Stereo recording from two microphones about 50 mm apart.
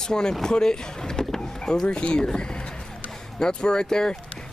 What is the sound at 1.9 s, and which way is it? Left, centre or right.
Speech, centre.